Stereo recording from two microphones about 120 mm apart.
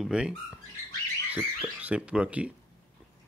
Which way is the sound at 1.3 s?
10° right (ahead or behind).